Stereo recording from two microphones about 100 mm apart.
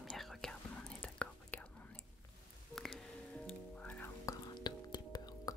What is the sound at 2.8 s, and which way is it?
Music, 5° left (ahead or behind).